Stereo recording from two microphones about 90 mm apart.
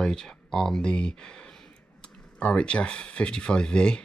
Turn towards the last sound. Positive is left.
turn(degrees=10)  # may be behind; listen again after turning